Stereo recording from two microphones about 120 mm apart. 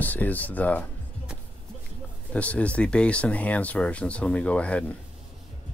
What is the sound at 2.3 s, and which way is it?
Speech, 10° left (ahead or behind).